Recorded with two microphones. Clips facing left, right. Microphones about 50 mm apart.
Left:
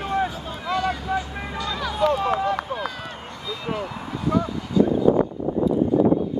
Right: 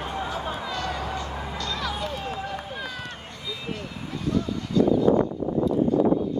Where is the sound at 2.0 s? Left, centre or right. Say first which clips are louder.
Left 11 dB; left.